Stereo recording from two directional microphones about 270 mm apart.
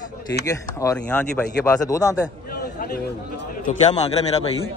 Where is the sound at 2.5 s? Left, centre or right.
Left.